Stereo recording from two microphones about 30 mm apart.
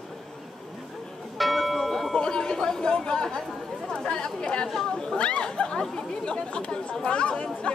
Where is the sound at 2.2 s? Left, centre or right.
Left.